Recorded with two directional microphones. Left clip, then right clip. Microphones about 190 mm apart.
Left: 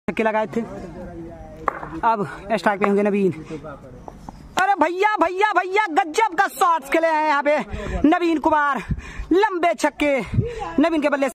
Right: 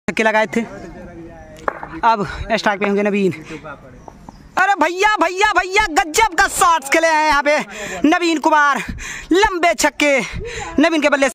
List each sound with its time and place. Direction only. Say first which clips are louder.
0.0 s speech: right 5 dB; 15° right (ahead or behind)
2.0 s a man's voice: right 6 dB; 10° right (ahead or behind)
4.6 s a man's voice: right 3 dB; centre (ahead or behind)